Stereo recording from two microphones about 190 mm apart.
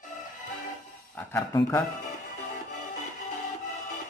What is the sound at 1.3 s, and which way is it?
Speech, 10° left (ahead or behind).